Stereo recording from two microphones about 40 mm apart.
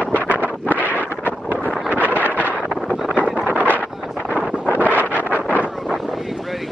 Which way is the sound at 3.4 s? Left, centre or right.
Right.